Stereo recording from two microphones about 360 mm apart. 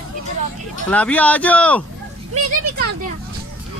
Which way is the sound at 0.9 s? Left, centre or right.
Centre.